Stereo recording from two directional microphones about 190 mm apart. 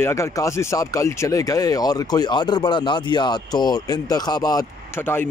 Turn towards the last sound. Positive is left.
turn(degrees=10)  # may be behind; listen again after turning